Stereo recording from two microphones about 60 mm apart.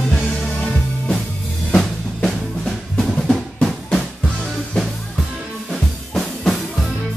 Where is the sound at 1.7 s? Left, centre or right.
Centre.